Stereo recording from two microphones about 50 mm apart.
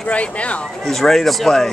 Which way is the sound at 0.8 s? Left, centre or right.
Centre.